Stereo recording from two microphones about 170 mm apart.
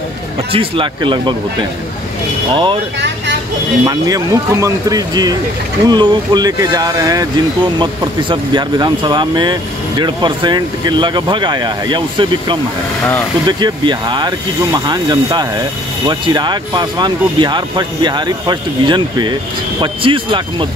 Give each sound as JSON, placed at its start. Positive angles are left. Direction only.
{"t": 0.5, "sound": "speech", "side_deg": -30}
{"t": 2.5, "sound": "speech", "side_deg": -30}
{"t": 3.8, "sound": "speech", "side_deg": -20}